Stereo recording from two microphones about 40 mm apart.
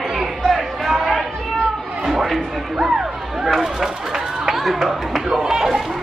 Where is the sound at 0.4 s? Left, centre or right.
Centre.